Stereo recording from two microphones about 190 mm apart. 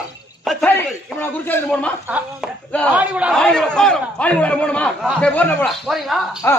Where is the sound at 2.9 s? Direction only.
5° right (ahead or behind).